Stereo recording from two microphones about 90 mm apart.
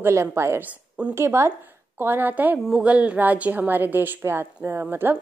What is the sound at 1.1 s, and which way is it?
A woman's voice, 30° right (ahead or behind).